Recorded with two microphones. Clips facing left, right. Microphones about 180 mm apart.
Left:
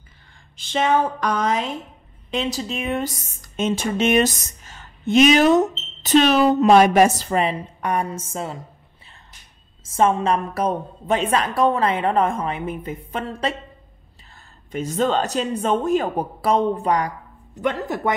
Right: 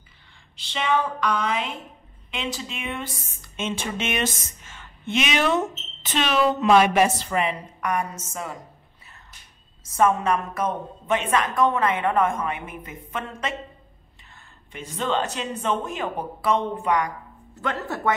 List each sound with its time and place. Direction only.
0.6 s a sound: 45° left (ahead or behind)
2.3 s speech: 40° left (ahead or behind)
9.8 s speech: 25° left (ahead or behind)
14.7 s speech: 40° left (ahead or behind)
17.6 s speech: 20° left (ahead or behind)